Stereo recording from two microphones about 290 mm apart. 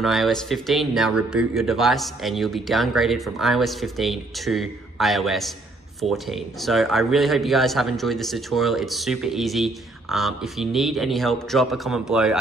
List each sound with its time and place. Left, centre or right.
0.0 s a man's voice: centre
6.6 s a man's voice: centre